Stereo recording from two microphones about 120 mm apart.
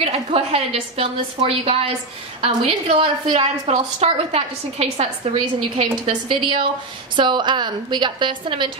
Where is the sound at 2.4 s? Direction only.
50° right (ahead or behind).